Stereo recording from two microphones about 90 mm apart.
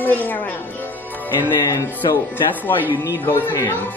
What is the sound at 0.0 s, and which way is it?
Speech, 20° left (ahead or behind).